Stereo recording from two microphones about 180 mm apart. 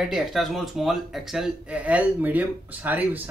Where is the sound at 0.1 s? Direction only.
Centre (ahead or behind).